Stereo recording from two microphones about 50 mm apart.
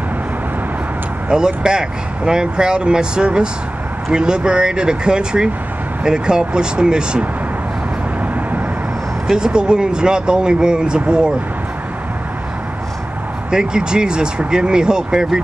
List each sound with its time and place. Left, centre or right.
1.3 s speech: centre
9.3 s speech: centre
13.5 s speech: centre